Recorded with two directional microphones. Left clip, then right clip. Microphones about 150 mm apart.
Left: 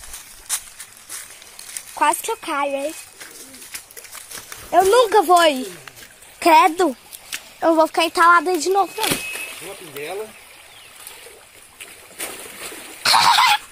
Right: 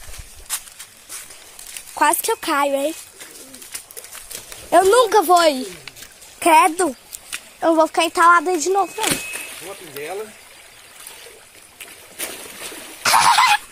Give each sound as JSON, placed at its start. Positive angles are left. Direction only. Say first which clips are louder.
{"t": 2.0, "sound": "speech", "louder": "right 2 dB", "side_deg": -35}
{"t": 4.8, "sound": "speech", "louder": "left 2 dB", "side_deg": -10}
{"t": 6.4, "sound": "a sound", "louder": "left 1 dB", "side_deg": 10}
{"t": 7.7, "sound": "speech", "louder": "right 1 dB", "side_deg": 0}
{"t": 11.8, "sound": "splash", "louder": "right 1 dB", "side_deg": 0}